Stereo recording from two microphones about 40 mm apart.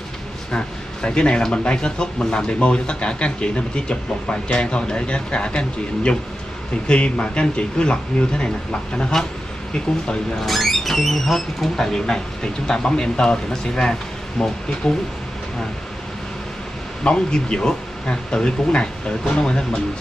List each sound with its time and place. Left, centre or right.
0.5 s speech: left
9.1 s speech: centre
10.4 s speech: centre
17.0 s speech: left